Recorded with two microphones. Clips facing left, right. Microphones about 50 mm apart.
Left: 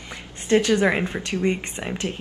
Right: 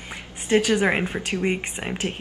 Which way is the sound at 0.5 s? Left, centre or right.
Right.